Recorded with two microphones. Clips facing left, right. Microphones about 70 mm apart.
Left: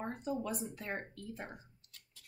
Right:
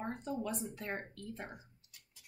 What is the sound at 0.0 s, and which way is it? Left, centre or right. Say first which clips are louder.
Speech: left 1 dB; centre.